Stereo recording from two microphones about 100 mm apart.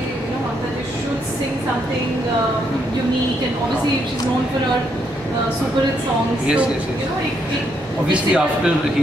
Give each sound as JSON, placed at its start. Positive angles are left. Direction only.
{"t": 8.1, "sound": "speech", "side_deg": -10}